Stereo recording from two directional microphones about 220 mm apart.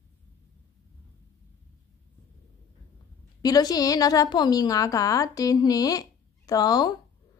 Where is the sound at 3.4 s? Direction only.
15° left (ahead or behind).